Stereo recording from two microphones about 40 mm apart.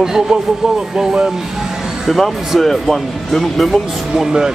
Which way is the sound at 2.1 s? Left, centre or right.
Centre.